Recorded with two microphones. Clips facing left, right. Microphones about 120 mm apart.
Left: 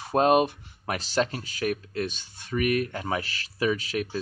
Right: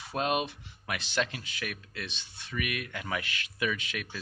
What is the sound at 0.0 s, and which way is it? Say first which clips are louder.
Speech: left 9 dB; 45° left (ahead or behind).